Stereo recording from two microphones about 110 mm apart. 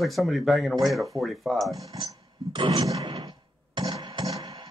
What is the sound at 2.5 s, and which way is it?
Speech, 50° right (ahead or behind).